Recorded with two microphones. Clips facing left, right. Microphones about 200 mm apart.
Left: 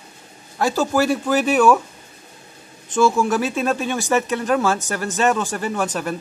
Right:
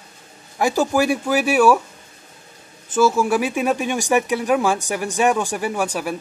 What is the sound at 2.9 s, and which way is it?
Speech, 5° right (ahead or behind).